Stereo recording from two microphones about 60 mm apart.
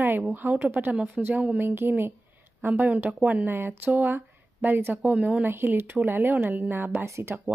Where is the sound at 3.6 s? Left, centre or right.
Right.